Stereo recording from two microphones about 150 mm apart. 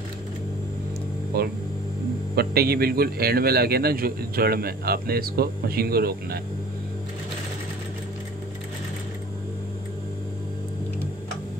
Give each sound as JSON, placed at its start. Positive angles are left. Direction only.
{"t": 1.3, "sound": "a man's voice", "side_deg": -90}